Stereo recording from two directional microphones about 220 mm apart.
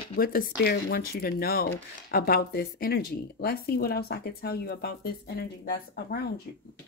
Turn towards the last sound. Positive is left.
turn(degrees=45)  # may be behind; listen again after turning